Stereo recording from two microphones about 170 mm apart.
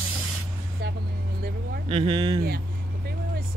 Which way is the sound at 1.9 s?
30° right (ahead or behind).